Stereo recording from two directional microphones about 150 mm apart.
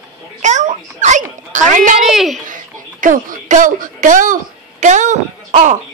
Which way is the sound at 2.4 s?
60° right (ahead or behind).